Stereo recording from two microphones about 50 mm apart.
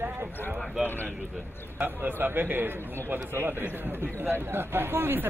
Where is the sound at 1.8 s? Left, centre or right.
Right.